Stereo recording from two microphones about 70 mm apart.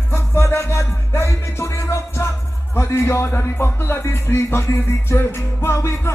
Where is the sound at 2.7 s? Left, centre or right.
Left.